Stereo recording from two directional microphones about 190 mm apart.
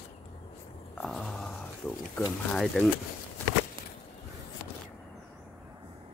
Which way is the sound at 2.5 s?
Centre (ahead or behind).